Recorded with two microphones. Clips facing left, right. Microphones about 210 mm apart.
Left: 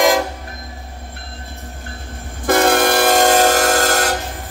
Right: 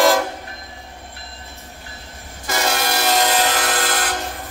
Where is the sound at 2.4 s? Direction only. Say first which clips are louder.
Left 9 dB; 55° left (ahead or behind).